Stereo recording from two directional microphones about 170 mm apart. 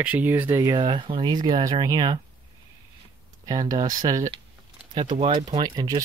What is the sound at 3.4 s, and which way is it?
Speech, 20° right (ahead or behind).